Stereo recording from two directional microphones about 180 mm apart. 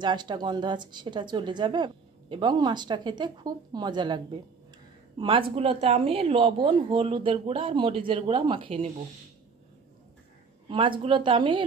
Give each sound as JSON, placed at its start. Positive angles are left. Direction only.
{"t": 0.0, "sound": "speech", "side_deg": -25}
{"t": 10.7, "sound": "speech", "side_deg": -30}